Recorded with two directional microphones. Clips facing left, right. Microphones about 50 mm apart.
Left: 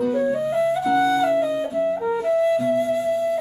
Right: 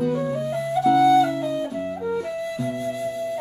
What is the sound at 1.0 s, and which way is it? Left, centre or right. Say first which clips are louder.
Music: right 1 dB; centre.